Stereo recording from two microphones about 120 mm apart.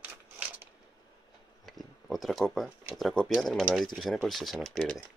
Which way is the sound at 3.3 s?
Centre (ahead or behind).